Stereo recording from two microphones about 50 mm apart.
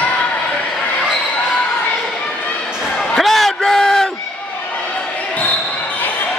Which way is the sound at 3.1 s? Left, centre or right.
Centre.